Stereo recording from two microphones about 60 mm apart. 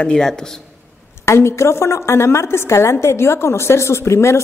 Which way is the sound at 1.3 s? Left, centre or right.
Left.